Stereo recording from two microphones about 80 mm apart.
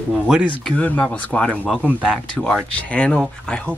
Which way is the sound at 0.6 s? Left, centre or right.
Centre.